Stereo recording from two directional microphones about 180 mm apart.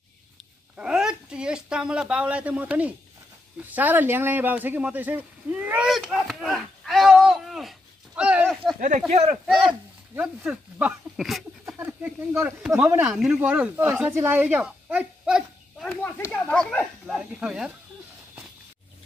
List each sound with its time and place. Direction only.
0.7 s speech: 5° right (ahead or behind)
15.8 s speech: 5° left (ahead or behind)